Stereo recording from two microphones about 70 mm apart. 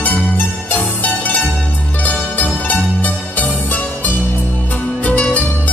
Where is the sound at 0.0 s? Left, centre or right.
Left.